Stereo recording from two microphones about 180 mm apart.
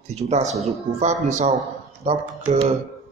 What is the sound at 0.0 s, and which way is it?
Speech, 40° right (ahead or behind).